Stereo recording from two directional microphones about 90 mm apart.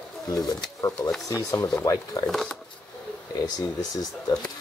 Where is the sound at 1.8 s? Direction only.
40° left (ahead or behind).